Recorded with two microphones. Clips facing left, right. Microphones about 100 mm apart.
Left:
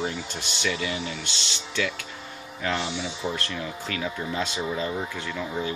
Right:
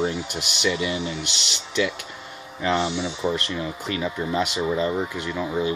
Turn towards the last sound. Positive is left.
turn(degrees=-15)  # may be behind; listen again after turning